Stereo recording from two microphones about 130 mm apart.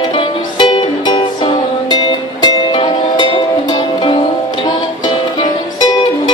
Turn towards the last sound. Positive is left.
turn(degrees=35)  # may be behind; listen again after turning